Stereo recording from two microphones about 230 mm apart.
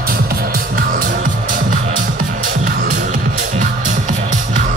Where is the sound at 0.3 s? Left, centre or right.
Right.